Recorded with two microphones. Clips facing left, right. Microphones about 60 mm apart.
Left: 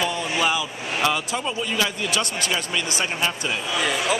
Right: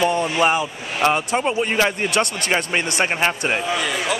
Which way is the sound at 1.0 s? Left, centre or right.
Right.